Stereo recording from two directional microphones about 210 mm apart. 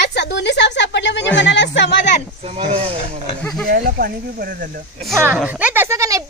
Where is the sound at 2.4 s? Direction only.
30° right (ahead or behind).